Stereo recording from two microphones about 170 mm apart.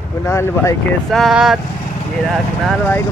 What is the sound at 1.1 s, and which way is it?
Speech, centre (ahead or behind).